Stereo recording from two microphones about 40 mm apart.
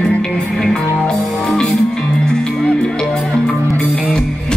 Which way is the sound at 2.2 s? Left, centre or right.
Centre.